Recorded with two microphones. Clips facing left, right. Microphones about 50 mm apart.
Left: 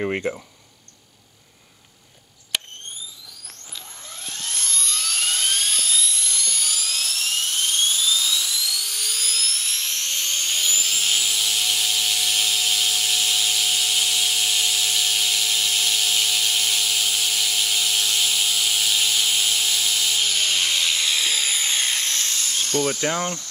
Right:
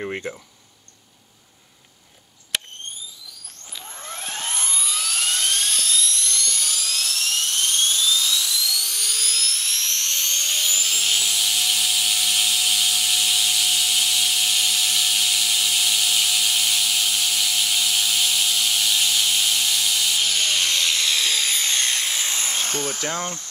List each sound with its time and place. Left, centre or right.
2.5 s fire alarm: centre
4.1 s a sound: right
4.4 s dental drill: right
4.8 s dental drill: centre
22.2 s a sound: centre
22.9 s speech: left